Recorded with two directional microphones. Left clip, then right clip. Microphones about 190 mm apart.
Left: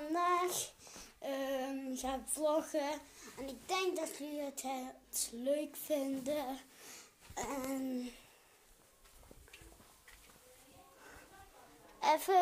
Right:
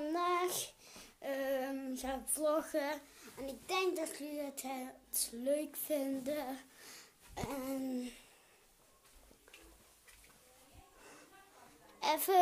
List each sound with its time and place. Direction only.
0.0 s female singing: 10° right (ahead or behind)
7.9 s a child's voice: 15° right (ahead or behind)
12.0 s a child's voice: 10° right (ahead or behind)